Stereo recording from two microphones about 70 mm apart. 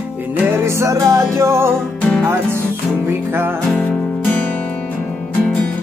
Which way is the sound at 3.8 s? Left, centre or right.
Centre.